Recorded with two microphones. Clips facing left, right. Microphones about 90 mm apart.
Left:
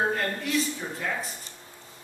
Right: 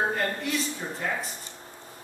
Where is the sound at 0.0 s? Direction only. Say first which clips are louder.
Even; 5° right (ahead or behind).